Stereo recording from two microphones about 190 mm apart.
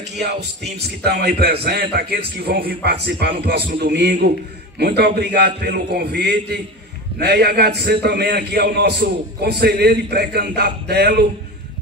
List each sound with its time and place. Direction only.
1.0 s a man's voice: 55° right (ahead or behind)